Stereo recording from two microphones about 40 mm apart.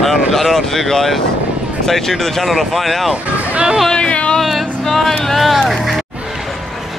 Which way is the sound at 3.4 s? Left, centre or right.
Right.